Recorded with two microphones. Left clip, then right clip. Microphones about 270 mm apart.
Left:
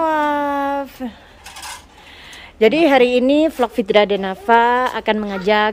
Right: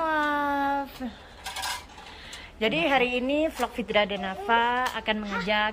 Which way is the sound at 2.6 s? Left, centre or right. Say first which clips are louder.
Left 11 dB; left.